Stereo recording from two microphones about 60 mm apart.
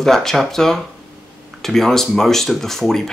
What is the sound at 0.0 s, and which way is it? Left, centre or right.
Speech, centre.